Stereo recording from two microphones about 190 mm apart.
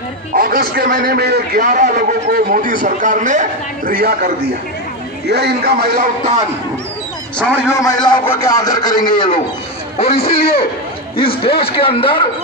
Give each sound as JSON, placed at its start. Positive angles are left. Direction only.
{"t": 0.3, "sound": "a man's voice", "side_deg": -50}
{"t": 5.3, "sound": "a man's voice", "side_deg": -55}
{"t": 7.3, "sound": "a man's voice", "side_deg": 15}
{"t": 11.4, "sound": "speech", "side_deg": 30}